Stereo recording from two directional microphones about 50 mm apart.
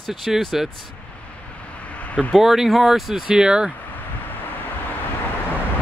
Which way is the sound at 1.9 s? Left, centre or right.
Left.